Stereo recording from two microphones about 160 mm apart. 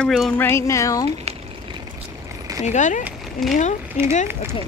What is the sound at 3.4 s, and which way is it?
Speech, centre (ahead or behind).